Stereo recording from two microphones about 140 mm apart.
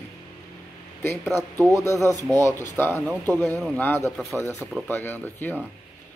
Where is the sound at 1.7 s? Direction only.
20° left (ahead or behind).